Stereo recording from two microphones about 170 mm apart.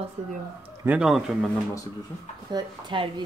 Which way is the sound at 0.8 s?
5° right (ahead or behind).